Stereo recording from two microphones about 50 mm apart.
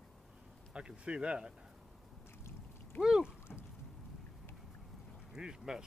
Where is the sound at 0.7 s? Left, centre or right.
Right.